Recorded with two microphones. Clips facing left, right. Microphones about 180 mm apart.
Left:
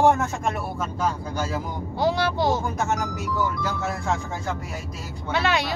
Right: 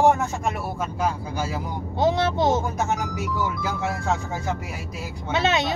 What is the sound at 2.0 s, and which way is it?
Speech, 20° right (ahead or behind).